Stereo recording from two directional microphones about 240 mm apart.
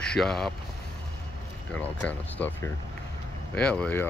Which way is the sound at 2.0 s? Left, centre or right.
Centre.